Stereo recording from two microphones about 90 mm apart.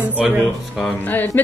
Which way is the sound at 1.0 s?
20° left (ahead or behind).